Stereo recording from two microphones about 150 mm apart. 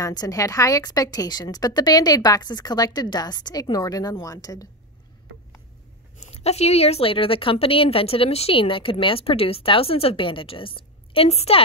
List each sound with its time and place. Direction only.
0.0 s a woman's voice: 25° left (ahead or behind)
6.1 s a woman's voice: 45° left (ahead or behind)